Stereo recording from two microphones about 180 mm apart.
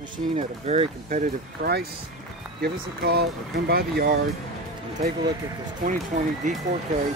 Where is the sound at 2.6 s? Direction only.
65° right (ahead or behind).